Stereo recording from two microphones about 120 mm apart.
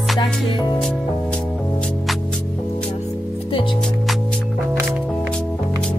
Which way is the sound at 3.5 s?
45° left (ahead or behind).